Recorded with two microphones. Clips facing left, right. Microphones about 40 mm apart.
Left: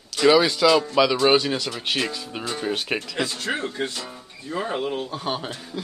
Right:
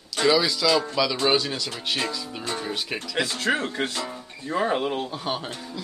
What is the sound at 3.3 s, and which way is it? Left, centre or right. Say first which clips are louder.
Speech: right 2 dB; right.